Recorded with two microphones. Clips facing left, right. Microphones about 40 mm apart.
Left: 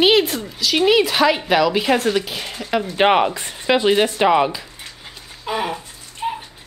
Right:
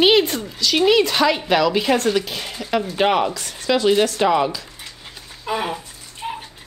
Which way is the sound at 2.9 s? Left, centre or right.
Left.